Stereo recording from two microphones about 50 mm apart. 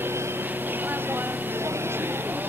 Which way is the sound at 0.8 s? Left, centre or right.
Right.